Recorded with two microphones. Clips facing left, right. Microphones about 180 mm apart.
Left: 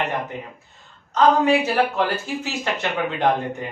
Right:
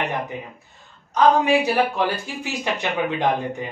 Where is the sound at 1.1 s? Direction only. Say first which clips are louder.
Even; 10° right (ahead or behind).